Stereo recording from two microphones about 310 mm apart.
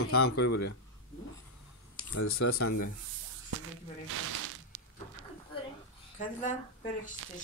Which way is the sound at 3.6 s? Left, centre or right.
Right.